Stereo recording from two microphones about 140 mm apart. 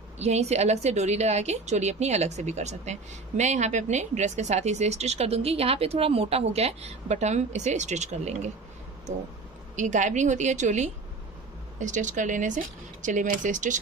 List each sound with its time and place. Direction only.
0.2 s a woman's voice: 50° right (ahead or behind)
9.8 s a woman's voice: 60° right (ahead or behind)